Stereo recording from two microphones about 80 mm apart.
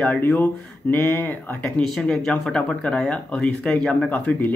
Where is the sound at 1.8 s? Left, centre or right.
Centre.